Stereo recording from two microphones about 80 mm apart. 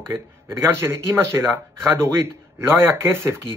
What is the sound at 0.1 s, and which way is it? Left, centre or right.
Speech, right.